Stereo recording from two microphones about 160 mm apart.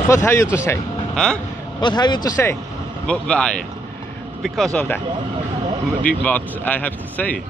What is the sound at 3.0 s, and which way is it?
Speech, 5° left (ahead or behind).